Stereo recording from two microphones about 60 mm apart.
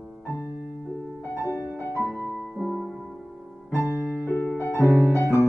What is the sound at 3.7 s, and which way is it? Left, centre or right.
Music, centre.